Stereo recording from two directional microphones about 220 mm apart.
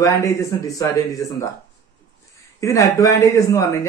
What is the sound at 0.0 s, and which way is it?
Speech, 15° left (ahead or behind).